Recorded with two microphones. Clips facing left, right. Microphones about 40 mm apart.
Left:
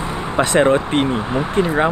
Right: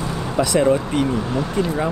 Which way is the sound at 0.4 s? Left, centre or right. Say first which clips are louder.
Left 3 dB; left.